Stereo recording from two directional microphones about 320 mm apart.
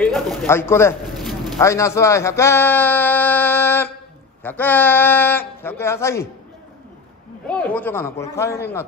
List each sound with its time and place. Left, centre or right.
0.0 s a man's voice: centre
7.4 s a man's voice: centre